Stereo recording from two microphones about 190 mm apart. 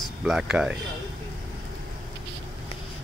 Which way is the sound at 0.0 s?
Centre (ahead or behind).